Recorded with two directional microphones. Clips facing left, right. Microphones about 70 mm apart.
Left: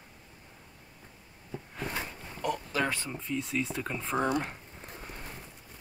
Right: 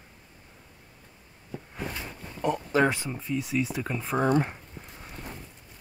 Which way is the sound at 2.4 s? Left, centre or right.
Right.